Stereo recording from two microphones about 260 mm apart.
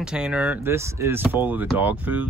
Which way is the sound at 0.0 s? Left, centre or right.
Centre.